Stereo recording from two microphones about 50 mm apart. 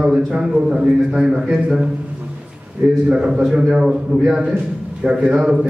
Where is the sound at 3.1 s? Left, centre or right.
Centre.